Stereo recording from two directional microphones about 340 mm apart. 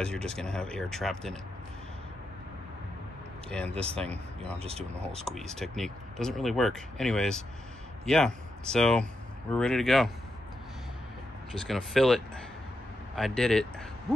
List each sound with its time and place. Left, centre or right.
0.0 s speech: centre
3.4 s speech: centre
4.6 s speech: centre
5.0 s speech: centre
11.6 s speech: centre